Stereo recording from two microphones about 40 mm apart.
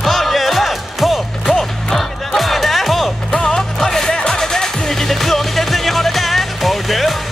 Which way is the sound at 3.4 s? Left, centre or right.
Centre.